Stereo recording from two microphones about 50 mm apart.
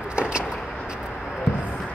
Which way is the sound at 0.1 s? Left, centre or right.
Right.